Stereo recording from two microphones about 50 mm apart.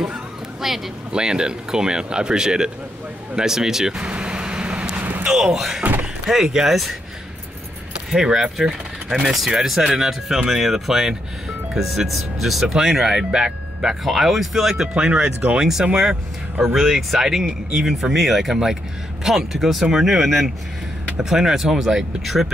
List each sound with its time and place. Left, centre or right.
0.6 s speech: centre
1.1 s speech: centre
4.0 s vehicle: right
5.2 s speech: centre
8.1 s speech: centre